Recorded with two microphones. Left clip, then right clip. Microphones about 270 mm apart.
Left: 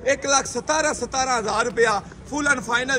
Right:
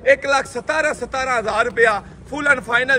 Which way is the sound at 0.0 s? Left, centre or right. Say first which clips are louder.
Right 5 dB; centre.